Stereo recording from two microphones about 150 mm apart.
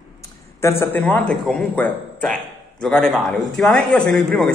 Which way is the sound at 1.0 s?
5° left (ahead or behind).